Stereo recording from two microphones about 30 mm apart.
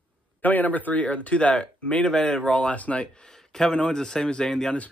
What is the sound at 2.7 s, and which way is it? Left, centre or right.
Speech, left.